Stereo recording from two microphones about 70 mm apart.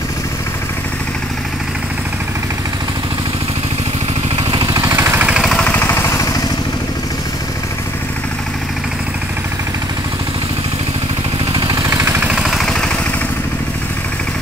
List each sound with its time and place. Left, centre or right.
4.8 s vehicle: right
5.3 s vehicle: centre
5.6 s vehicle: left
11.7 s vehicle: right
12.2 s a sound: centre
12.4 s vehicle: centre